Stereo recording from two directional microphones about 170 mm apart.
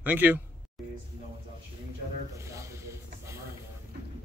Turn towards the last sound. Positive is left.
turn(degrees=-15)  # may be behind; listen again after turning